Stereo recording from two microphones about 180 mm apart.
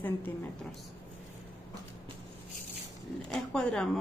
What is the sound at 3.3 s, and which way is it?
Speech, 5° left (ahead or behind).